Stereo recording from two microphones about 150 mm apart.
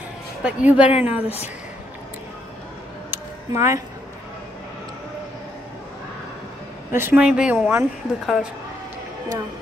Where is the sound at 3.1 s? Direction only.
20° right (ahead or behind).